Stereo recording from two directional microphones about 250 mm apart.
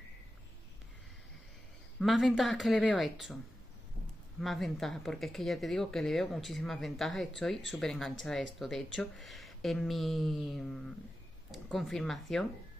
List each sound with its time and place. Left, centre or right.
2.0 s speech: centre
4.4 s speech: centre